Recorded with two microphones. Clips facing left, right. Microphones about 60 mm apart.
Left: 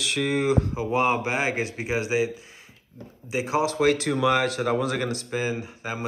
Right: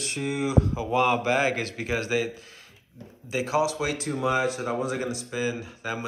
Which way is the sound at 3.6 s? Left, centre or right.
Left.